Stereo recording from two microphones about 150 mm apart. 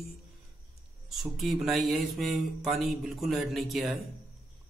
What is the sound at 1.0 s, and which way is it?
Speech, centre (ahead or behind).